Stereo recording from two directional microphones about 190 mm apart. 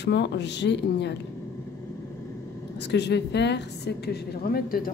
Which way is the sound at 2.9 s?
65° left (ahead or behind).